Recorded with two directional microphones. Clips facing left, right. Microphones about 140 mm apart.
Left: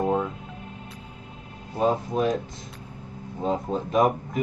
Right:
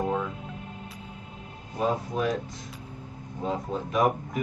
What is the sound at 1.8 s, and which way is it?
Speech, 25° left (ahead or behind).